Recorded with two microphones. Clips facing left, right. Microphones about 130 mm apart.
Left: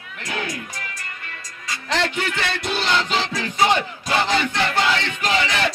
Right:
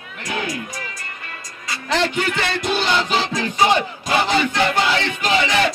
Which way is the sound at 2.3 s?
20° right (ahead or behind).